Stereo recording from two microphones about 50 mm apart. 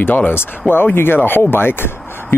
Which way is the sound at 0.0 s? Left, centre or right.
Left.